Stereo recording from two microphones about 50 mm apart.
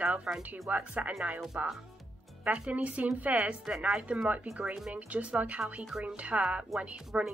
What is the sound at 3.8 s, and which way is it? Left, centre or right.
Speech, right.